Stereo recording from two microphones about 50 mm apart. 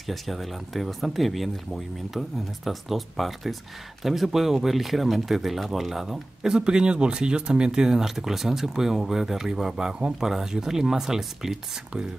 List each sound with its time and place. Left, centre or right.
0.0 s speech: centre